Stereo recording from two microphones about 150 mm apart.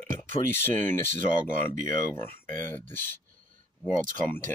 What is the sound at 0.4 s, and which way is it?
Speech, 60° right (ahead or behind).